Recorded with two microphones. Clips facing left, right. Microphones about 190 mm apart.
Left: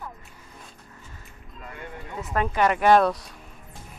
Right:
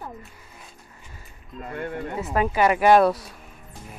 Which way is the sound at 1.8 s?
60° right (ahead or behind).